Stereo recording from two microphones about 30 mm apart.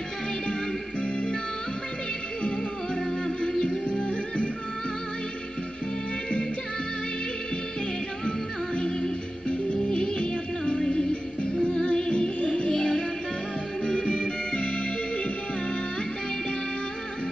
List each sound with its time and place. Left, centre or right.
1.0 s music: left
3.1 s music: centre
3.9 s music: left
8.3 s music: left
12.7 s music: left
14.2 s music: left